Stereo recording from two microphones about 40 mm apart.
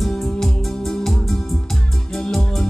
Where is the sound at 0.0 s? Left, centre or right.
Centre.